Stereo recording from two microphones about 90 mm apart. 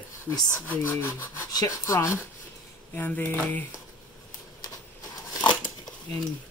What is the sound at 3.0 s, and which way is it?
Speech, 20° left (ahead or behind).